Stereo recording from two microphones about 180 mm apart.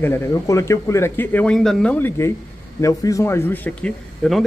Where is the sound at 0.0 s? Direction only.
15° left (ahead or behind).